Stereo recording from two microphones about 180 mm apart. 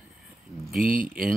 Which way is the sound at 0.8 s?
50° right (ahead or behind).